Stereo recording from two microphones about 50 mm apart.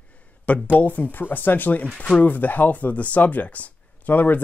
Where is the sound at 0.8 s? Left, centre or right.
Left.